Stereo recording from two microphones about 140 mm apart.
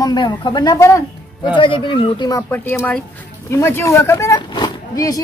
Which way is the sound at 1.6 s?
35° left (ahead or behind).